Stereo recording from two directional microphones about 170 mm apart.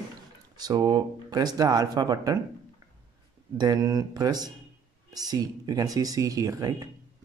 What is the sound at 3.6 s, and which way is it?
A man's voice, 20° right (ahead or behind).